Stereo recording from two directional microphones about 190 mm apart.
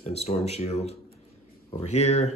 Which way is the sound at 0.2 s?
35° left (ahead or behind).